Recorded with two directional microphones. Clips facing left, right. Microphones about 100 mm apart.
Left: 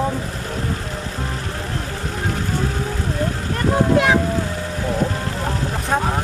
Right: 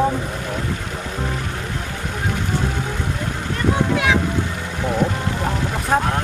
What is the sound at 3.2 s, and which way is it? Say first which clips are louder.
Vehicle: left 2 dB; 40° left (ahead or behind).